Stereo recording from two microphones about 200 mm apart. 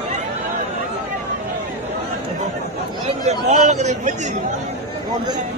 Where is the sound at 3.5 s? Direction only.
35° right (ahead or behind).